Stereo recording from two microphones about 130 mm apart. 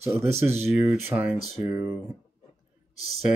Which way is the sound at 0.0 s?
20° right (ahead or behind).